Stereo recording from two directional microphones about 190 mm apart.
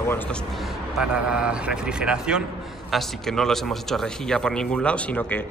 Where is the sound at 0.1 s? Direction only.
5° left (ahead or behind).